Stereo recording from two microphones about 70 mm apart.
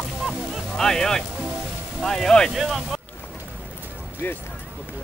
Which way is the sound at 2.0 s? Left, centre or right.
Centre.